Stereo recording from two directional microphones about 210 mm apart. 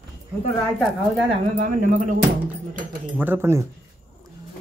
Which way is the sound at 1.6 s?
40° right (ahead or behind).